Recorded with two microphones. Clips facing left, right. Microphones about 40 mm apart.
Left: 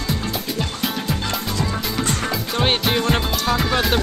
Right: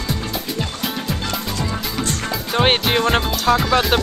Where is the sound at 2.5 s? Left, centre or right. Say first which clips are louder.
Right 5 dB; right.